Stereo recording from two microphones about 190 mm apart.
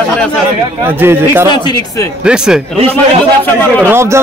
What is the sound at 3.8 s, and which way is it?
Speech, 15° right (ahead or behind).